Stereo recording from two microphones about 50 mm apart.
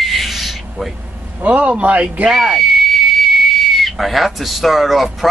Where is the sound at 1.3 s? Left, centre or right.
Right.